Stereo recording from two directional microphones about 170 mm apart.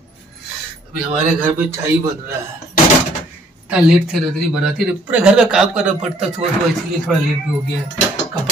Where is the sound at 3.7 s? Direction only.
Centre (ahead or behind).